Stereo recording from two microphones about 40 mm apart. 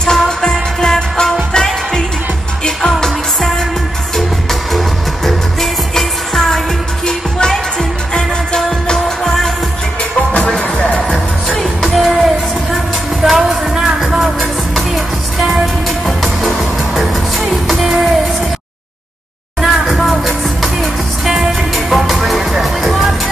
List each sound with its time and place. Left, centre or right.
0.0 s music: centre
11.1 s music: centre
19.6 s music: centre